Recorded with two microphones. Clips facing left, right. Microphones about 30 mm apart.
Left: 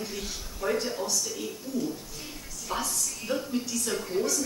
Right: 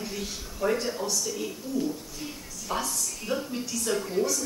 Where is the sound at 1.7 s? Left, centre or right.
Centre.